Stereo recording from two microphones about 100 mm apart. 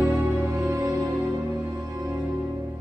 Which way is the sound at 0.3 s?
25° right (ahead or behind).